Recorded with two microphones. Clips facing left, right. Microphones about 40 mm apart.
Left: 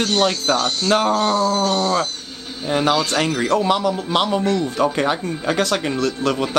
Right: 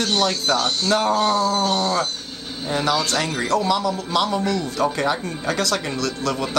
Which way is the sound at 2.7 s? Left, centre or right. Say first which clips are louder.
Left 3 dB; left.